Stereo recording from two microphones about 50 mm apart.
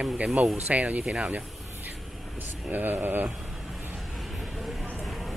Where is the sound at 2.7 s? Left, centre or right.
Right.